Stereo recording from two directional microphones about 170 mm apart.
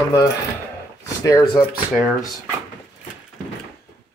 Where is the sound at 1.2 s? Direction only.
20° left (ahead or behind).